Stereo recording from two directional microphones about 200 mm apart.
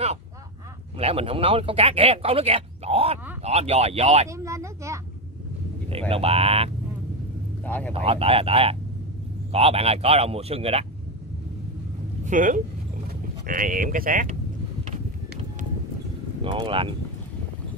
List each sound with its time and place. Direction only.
0.9 s speech: 30° right (ahead or behind)
4.3 s speech: 15° right (ahead or behind)
5.9 s speech: 30° right (ahead or behind)
7.6 s speech: 5° left (ahead or behind)
7.9 s speech: 30° right (ahead or behind)
12.3 s speech: 40° right (ahead or behind)
16.4 s speech: 25° right (ahead or behind)